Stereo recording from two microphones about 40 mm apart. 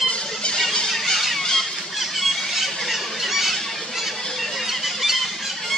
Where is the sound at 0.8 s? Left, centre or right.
Centre.